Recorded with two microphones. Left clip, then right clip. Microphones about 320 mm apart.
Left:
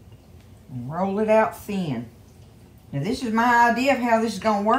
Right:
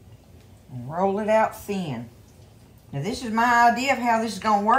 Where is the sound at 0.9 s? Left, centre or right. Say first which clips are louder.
Left 1 dB; centre.